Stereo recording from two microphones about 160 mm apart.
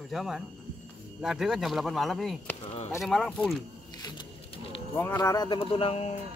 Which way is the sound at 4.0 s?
30° left (ahead or behind).